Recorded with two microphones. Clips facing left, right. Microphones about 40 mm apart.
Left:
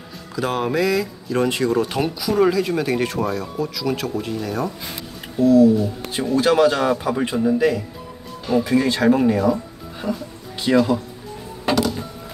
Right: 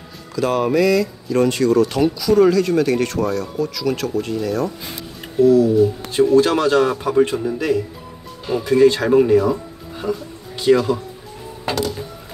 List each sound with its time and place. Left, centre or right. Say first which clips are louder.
0.4 s speech: right 4 dB; centre
10.0 s speech: right 2 dB; right
10.6 s speech: right 2 dB; centre
11.6 s music: left 2 dB; centre